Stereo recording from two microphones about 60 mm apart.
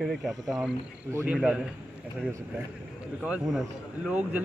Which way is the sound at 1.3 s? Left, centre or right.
Centre.